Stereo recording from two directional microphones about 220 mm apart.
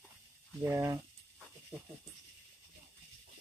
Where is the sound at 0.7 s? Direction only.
15° right (ahead or behind).